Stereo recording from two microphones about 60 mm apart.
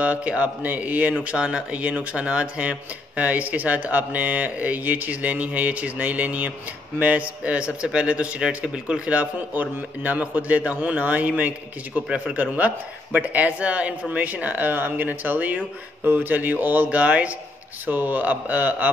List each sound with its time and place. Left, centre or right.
0.0 s speech: right